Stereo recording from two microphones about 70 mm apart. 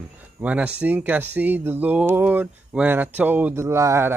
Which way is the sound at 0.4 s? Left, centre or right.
Right.